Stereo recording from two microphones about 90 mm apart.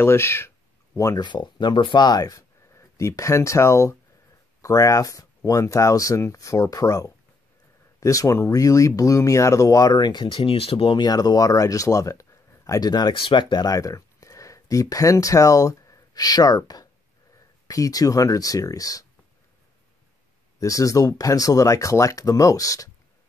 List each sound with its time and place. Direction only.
0.0 s speech: 30° left (ahead or behind)
1.2 s speech: 60° left (ahead or behind); by 11.0 s 90° left
11.0 s speech: 45° left (ahead or behind)
13.1 s speech: 70° left (ahead or behind); by 19.0 s 40° left (ahead or behind)
20.5 s speech: 40° left (ahead or behind)